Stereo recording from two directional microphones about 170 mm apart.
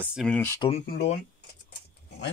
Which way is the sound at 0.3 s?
10° left (ahead or behind).